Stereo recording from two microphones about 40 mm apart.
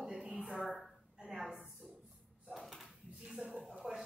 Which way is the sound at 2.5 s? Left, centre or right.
Centre.